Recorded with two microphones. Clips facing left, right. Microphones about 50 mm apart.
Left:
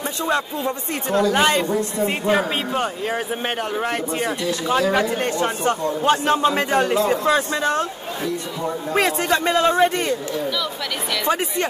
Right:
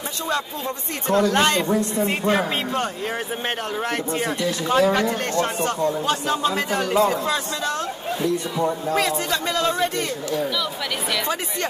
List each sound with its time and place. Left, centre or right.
1.0 s a man's voice: centre; by 7.8 s left
8.9 s a man's voice: left